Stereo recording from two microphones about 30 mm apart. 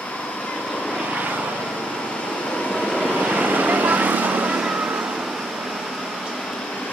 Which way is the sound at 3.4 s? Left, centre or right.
Right.